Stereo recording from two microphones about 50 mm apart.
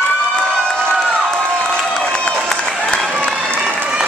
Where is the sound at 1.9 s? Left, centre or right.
Centre.